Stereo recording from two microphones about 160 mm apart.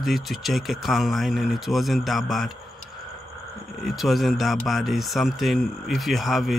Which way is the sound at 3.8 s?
Centre (ahead or behind).